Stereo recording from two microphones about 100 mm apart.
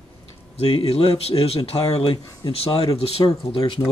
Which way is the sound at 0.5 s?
80° left.